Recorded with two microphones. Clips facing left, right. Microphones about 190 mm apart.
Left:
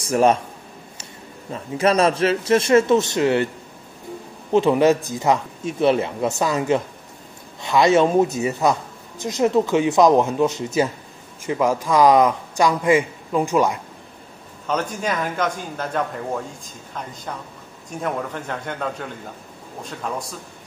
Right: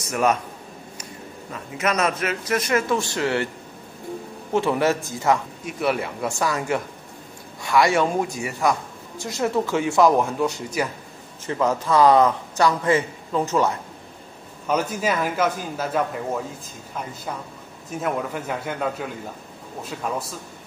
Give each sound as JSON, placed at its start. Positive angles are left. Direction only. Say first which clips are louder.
{"t": 0.0, "sound": "a man's voice", "louder": "left 5 dB", "side_deg": 30}
{"t": 1.5, "sound": "speech", "louder": "left 6 dB", "side_deg": 30}
{"t": 4.5, "sound": "a man's voice", "louder": "left 5 dB", "side_deg": 20}
{"t": 11.4, "sound": "a man's voice", "louder": "left 2 dB", "side_deg": 10}
{"t": 14.7, "sound": "a man's voice", "louder": "right 1 dB", "side_deg": -10}
{"t": 18.0, "sound": "a man's voice", "louder": "even", "side_deg": -5}